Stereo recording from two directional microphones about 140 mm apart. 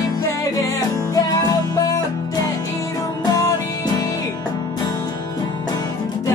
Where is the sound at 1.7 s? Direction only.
25° left (ahead or behind).